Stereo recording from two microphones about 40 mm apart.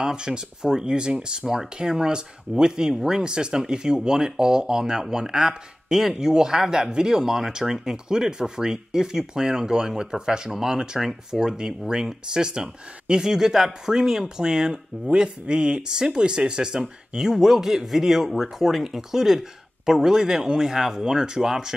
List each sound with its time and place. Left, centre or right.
0.0 s speech: centre
17.2 s speech: centre